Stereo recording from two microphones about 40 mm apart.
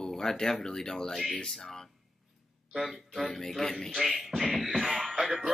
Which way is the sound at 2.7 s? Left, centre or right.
Centre.